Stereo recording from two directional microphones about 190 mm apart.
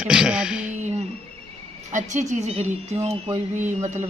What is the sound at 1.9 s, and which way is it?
Speech, 40° right (ahead or behind).